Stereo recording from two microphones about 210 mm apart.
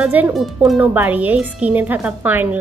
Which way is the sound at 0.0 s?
5° right (ahead or behind).